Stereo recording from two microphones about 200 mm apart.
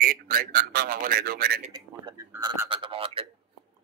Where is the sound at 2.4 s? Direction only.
20° right (ahead or behind).